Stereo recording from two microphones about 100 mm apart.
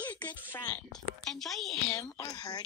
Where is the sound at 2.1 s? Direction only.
40° left (ahead or behind).